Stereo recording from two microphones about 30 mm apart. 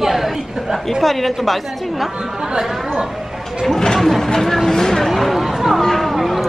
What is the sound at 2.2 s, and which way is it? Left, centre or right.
Speech, right.